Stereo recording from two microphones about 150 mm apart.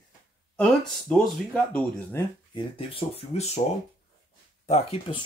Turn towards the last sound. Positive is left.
turn(degrees=40)  # may be behind; listen again after turning